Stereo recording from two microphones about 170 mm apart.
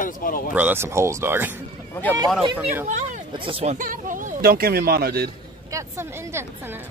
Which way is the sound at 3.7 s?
50° right (ahead or behind).